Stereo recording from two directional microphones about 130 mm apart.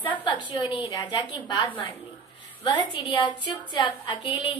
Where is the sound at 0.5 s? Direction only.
35° left (ahead or behind).